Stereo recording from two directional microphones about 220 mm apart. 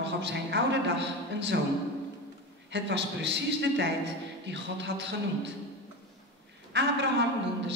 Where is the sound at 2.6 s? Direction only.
55° right (ahead or behind).